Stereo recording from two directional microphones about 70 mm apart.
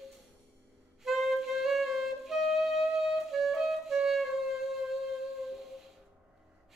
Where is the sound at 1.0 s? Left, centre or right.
Centre.